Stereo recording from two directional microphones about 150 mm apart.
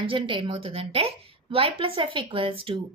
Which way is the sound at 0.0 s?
35° right (ahead or behind).